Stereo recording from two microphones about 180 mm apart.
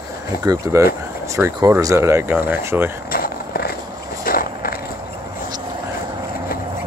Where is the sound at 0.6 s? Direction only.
15° right (ahead or behind).